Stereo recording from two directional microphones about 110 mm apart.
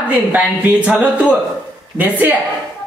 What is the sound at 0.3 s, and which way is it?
A woman's voice, 15° right (ahead or behind).